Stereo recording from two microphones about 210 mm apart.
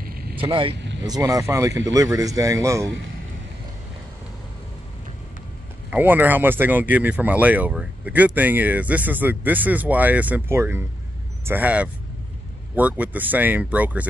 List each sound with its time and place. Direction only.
0.0 s vehicle: 45° right (ahead or behind)
0.4 s speech: 25° right (ahead or behind)
5.9 s speech: 10° right (ahead or behind)